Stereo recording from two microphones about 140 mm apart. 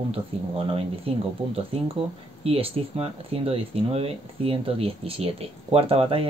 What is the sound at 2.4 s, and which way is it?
Speech, 45° right (ahead or behind).